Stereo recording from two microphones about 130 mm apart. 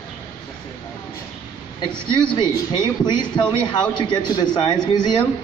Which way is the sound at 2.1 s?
35° left (ahead or behind).